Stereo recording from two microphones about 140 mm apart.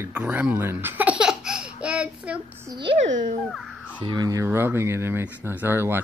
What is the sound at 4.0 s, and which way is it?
Speech, 30° right (ahead or behind).